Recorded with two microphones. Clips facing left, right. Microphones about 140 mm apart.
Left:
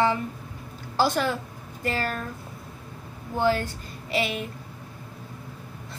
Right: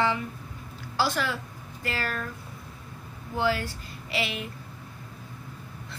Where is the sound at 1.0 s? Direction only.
45° left (ahead or behind).